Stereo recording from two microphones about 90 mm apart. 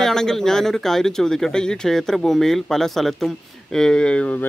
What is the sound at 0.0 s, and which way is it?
Speech, 5° left (ahead or behind).